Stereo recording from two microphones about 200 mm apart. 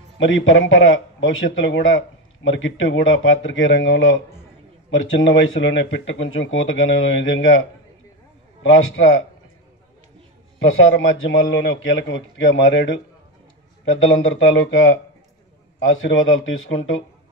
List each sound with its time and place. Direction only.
0.2 s a man's voice: 75° left (ahead or behind)
8.6 s a man's voice: 75° left (ahead or behind)
10.6 s a man's voice: 75° left (ahead or behind)